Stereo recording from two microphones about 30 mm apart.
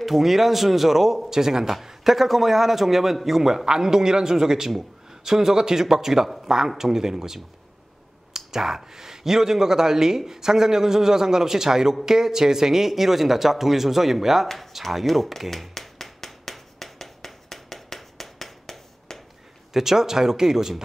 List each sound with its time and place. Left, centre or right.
0.0 s a man's voice: centre
8.5 s speech: centre
15.7 s a sound: centre
19.7 s speech: centre